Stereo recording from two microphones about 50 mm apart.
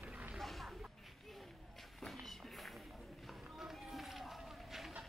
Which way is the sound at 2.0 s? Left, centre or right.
Centre.